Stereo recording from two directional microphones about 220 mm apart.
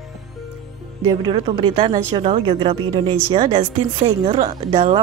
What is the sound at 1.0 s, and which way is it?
Speech, 20° right (ahead or behind).